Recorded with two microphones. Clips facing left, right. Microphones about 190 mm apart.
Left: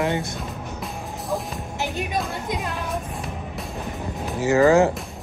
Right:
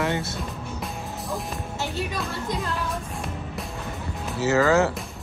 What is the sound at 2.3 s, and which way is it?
Speech, 15° left (ahead or behind).